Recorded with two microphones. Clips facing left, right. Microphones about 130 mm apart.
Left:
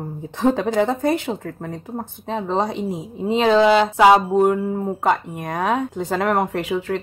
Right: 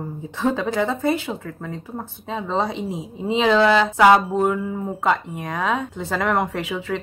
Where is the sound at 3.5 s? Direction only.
15° left (ahead or behind).